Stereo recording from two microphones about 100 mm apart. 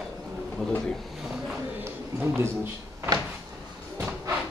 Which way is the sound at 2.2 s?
25° right (ahead or behind).